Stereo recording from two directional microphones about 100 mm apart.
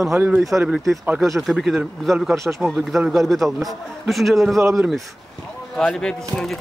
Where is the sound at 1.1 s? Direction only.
Centre (ahead or behind).